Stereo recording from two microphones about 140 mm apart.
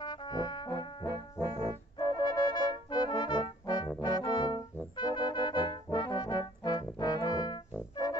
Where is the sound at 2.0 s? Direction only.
25° left (ahead or behind).